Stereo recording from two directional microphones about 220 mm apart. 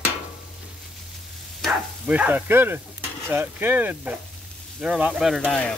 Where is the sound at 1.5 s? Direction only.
Centre (ahead or behind).